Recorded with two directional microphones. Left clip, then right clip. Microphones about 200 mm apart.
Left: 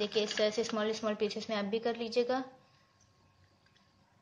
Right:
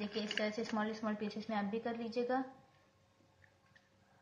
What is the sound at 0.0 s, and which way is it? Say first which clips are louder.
Speech: left 8 dB; 45° left (ahead or behind).